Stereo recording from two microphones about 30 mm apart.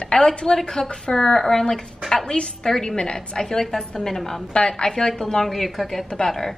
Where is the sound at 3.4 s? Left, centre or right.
Centre.